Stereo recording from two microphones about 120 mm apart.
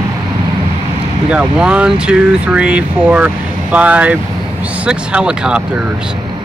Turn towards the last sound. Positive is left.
turn(degrees=-5)  # may be behind; listen again after turning